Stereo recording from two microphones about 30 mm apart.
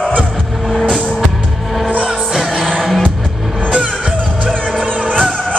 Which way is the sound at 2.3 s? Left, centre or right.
Centre.